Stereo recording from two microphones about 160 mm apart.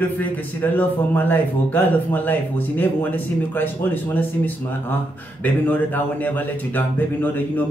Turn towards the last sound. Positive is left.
turn(degrees=10)  # may be behind; listen again after turning